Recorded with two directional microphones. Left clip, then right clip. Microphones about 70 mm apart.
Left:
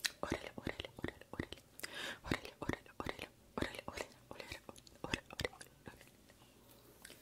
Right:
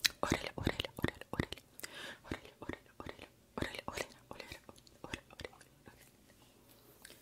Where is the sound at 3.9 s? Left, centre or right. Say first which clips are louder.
Right 4 dB; right.